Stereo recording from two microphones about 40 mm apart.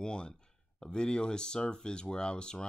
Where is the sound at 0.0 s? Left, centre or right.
Left.